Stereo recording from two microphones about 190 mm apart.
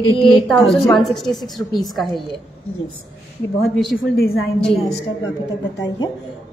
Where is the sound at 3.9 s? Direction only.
50° left (ahead or behind).